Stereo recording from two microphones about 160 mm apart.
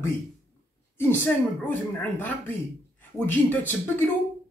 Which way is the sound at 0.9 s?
15° left (ahead or behind).